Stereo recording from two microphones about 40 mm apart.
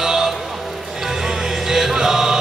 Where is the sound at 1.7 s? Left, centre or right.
Centre.